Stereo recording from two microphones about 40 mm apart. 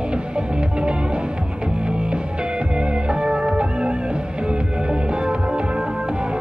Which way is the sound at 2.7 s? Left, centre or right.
Right.